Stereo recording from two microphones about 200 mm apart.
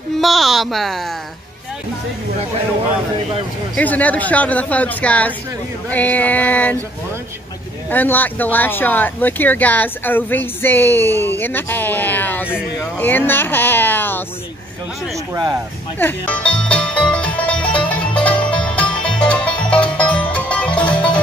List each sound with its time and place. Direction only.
0.2 s speech: centre (ahead or behind)
3.7 s speech: 10° left (ahead or behind)
7.9 s speech: 10° left (ahead or behind)
12.4 s speech: 5° right (ahead or behind)
12.9 s speech: 10° left (ahead or behind)
15.3 s speech: 20° right (ahead or behind)
16.0 s music: 10° left (ahead or behind)